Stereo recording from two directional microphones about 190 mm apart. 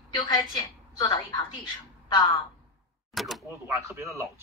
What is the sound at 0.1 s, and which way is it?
A woman's voice, 20° left (ahead or behind).